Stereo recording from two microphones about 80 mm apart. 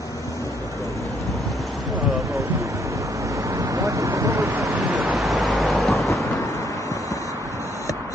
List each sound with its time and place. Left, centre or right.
3.4 s vehicle: right
5.0 s vehicle: centre
5.6 s thunder: centre